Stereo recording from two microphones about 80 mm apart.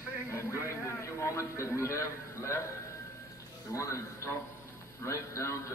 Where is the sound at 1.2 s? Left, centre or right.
Left.